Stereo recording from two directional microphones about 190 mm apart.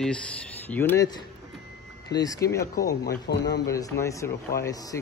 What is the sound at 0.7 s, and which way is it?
Speech, 10° left (ahead or behind).